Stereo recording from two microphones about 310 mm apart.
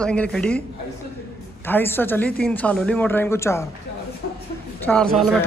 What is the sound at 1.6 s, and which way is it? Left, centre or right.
Speech, centre.